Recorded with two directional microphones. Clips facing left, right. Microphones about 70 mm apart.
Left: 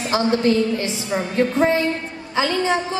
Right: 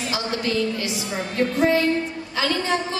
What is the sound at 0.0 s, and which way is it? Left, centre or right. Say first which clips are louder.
A woman's voice: left 7 dB; left.